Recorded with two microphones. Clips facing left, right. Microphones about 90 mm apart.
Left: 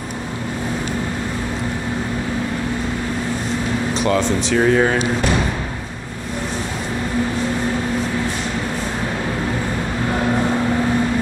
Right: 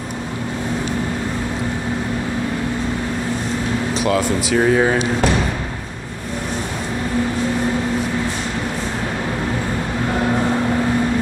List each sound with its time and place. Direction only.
3.9 s speech: 5° right (ahead or behind)